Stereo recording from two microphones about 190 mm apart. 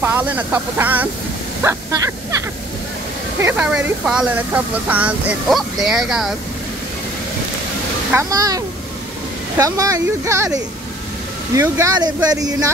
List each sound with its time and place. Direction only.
0.0 s speech: 10° right (ahead or behind)
3.3 s speech: 10° right (ahead or behind)
8.1 s speech: 15° right (ahead or behind)